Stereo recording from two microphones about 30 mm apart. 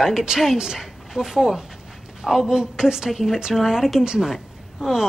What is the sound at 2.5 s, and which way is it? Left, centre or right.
Speech, right.